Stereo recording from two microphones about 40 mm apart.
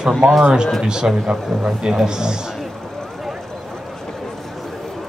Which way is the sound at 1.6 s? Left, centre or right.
Right.